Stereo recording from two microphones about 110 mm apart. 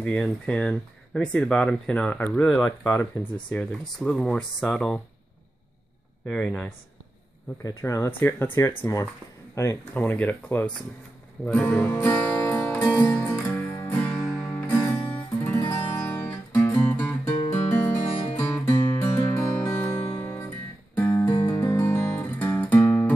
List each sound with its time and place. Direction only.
0.0 s speech: 10° left (ahead or behind)
2.5 s speech: 30° left (ahead or behind)
3.5 s speech: 5° left (ahead or behind)
6.2 s speech: 10° left (ahead or behind)
7.6 s speech: 30° left (ahead or behind)
8.2 s speech: 20° left (ahead or behind)
11.4 s music: 15° left (ahead or behind)
14.1 s music: centre (ahead or behind)
14.5 s music: 35° left (ahead or behind)
15.7 s music: 25° left (ahead or behind)
18.4 s music: 20° left (ahead or behind)